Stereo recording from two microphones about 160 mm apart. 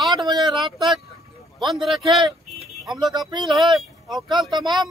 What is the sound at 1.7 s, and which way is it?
Speech, centre (ahead or behind).